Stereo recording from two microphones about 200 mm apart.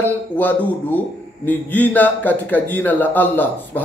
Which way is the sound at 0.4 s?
10° left (ahead or behind).